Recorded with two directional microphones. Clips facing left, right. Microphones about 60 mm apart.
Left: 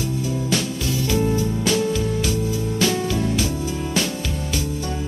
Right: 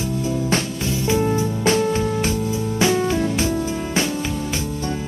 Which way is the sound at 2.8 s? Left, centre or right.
Right.